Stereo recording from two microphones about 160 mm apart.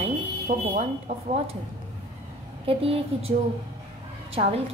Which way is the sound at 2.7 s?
35° right (ahead or behind).